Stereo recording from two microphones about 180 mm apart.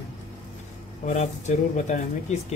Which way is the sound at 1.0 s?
40° left (ahead or behind).